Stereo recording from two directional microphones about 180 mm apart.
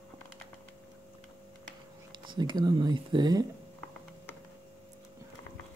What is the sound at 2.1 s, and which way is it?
Speech, 25° right (ahead or behind).